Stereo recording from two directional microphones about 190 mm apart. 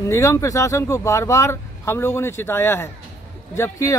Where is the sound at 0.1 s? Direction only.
15° left (ahead or behind).